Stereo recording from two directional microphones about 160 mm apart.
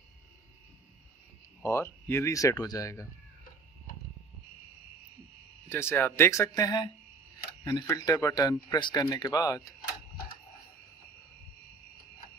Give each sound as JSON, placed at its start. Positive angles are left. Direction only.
{"t": 1.6, "sound": "speech", "side_deg": 15}
{"t": 5.7, "sound": "speech", "side_deg": 15}